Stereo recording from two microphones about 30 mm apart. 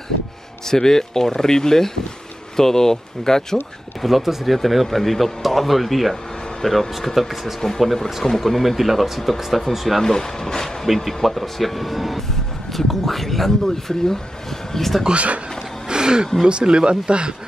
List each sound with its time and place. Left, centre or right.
0.7 s speech: centre
4.0 s speech: centre
7.2 s speech: centre
8.0 s speech: centre
8.7 s speech: centre
10.0 s speech: centre
15.1 s a man's voice: right
15.9 s a sound: right
16.4 s speech: right